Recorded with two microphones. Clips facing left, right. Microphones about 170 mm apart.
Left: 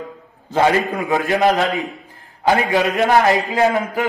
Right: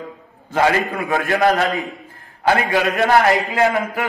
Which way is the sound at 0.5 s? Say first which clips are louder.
Left 1 dB; 20° left (ahead or behind).